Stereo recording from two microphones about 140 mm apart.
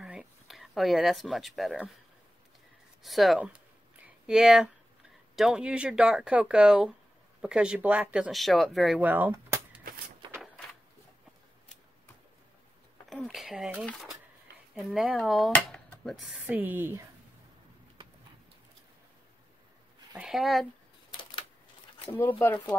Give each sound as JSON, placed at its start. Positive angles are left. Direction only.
{"t": 0.0, "sound": "a sound", "side_deg": -5}
{"t": 3.0, "sound": "speech", "side_deg": 0}
{"t": 9.0, "sound": "speech", "side_deg": -15}
{"t": 13.1, "sound": "a sound", "side_deg": 0}
{"t": 14.9, "sound": "speech", "side_deg": 0}
{"t": 20.2, "sound": "speech", "side_deg": 0}
{"t": 21.1, "sound": "camera", "side_deg": 35}
{"t": 22.4, "sound": "speech", "side_deg": 15}